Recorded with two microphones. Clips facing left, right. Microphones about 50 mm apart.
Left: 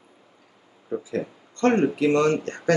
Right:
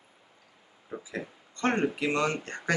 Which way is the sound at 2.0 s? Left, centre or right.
Centre.